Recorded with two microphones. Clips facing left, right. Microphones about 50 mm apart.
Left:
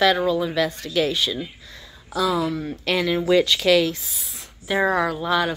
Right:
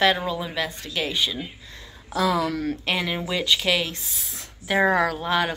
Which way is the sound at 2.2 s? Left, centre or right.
Right.